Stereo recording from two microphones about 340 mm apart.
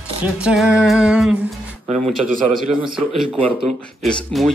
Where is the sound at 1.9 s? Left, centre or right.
Centre.